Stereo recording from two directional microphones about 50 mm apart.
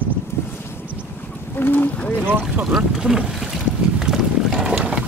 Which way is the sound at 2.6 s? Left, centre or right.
Centre.